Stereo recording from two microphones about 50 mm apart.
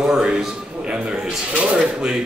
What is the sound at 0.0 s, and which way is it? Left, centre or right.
Speech, centre.